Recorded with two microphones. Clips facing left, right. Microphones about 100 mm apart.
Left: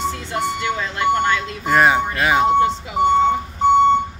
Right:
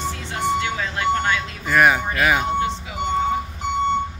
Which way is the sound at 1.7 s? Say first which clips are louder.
Left 2 dB; 25° left (ahead or behind).